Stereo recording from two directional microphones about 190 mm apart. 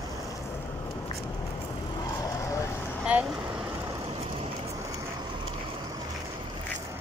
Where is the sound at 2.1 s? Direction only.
15° left (ahead or behind).